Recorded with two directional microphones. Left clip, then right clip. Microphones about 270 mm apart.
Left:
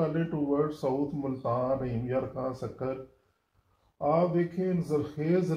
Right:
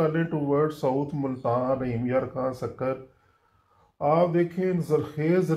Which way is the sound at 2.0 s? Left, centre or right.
Right.